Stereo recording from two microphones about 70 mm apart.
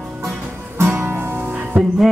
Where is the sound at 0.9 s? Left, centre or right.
Right.